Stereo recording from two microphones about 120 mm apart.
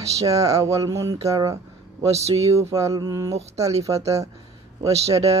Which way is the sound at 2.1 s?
60° right (ahead or behind).